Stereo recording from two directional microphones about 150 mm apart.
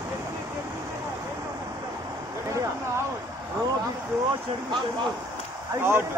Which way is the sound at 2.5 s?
20° right (ahead or behind).